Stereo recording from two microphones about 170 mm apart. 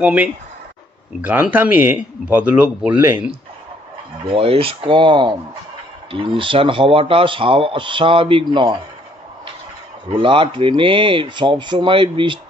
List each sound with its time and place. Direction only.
0.0 s speech: 10° right (ahead or behind)
4.3 s speech: 35° right (ahead or behind)
10.0 s speech: 30° right (ahead or behind)